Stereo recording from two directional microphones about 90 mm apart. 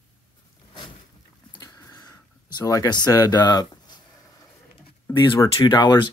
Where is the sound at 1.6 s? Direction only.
40° left (ahead or behind).